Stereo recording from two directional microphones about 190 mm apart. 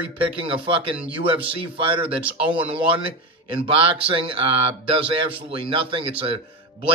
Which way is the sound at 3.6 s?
30° right (ahead or behind).